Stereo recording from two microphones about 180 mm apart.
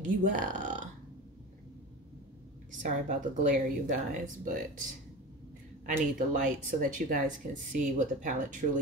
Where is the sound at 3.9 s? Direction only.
45° right (ahead or behind).